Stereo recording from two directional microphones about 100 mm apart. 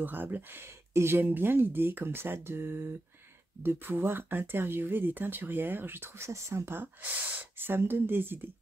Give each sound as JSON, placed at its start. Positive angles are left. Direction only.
{"t": 0.0, "sound": "speech", "side_deg": -20}